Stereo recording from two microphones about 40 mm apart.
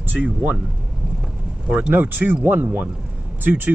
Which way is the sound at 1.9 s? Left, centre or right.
Right.